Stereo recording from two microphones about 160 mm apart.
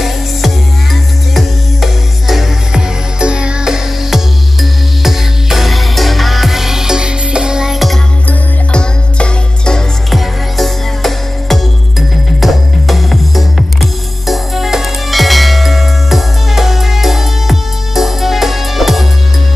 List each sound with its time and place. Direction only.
1.3 s music: centre (ahead or behind)